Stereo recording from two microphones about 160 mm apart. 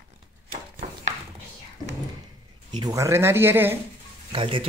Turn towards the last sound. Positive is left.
turn(degrees=-35)  # may be behind; listen again after turning